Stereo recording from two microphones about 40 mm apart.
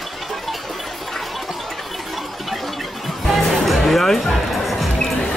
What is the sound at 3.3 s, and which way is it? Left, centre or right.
Music, centre.